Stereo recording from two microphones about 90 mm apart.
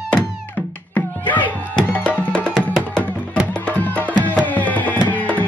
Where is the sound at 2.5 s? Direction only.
Centre (ahead or behind).